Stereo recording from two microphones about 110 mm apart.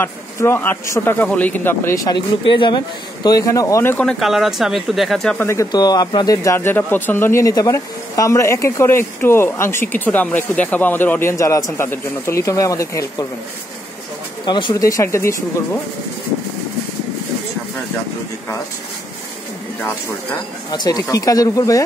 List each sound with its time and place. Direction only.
0.0 s speech: 20° left (ahead or behind)
2.0 s speech: 45° left (ahead or behind)
3.3 s speech: 30° left (ahead or behind)
3.9 s speech: 10° left (ahead or behind)
4.2 s speech: centre (ahead or behind)
5.4 s speech: 25° left (ahead or behind)
5.7 s speech: 40° left (ahead or behind)
14.4 s speech: 40° left (ahead or behind); by 15.8 s 25° left (ahead or behind)
19.8 s speech: 20° left (ahead or behind)
20.7 s speech: 40° left (ahead or behind)